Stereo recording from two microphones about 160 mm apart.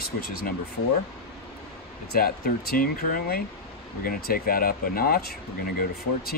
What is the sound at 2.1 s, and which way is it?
Speech, 65° left (ahead or behind).